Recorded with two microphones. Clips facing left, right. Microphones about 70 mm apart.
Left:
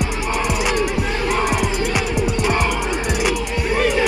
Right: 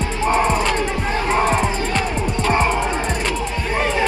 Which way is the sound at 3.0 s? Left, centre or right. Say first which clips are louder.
Left 2 dB; centre.